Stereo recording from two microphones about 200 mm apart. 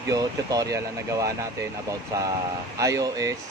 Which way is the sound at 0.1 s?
15° right (ahead or behind).